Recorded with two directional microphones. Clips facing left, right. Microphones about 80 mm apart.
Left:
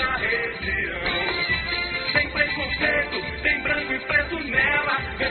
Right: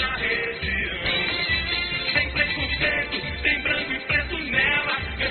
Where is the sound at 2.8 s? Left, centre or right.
Left.